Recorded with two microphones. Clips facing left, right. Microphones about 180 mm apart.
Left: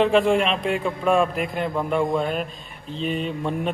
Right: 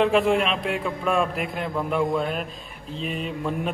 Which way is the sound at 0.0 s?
Centre (ahead or behind).